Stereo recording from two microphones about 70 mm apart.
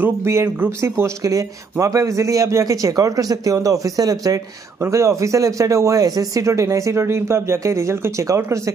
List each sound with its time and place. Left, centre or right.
0.0 s speech: right
4.8 s speech: right